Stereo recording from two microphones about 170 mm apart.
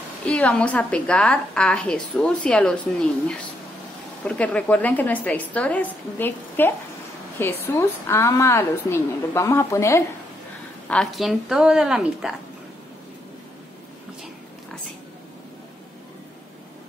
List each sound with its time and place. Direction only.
0.3 s a woman's voice: 5° left (ahead or behind)
10.9 s a woman's voice: 5° left (ahead or behind)